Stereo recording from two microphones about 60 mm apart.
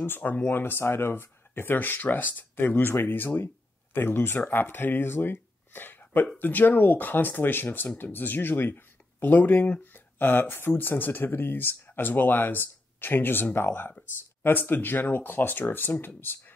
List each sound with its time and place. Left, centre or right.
0.0 s speech: left